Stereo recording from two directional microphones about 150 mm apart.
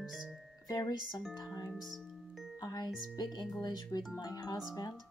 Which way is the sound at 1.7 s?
Centre (ahead or behind).